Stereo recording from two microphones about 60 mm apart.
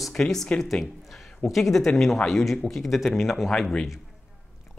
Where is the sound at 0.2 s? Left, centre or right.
Centre.